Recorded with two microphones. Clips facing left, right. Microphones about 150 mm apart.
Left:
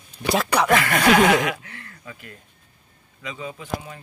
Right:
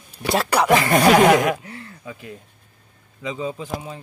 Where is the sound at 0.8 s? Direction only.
30° right (ahead or behind).